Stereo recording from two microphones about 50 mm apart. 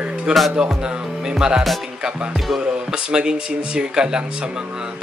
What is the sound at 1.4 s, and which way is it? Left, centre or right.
Speech, centre.